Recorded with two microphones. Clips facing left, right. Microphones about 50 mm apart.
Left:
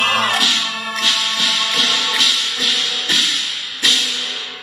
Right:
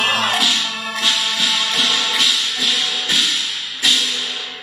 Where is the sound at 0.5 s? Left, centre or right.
Left.